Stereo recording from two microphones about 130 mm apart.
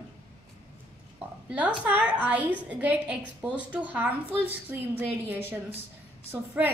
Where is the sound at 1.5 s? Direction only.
10° right (ahead or behind).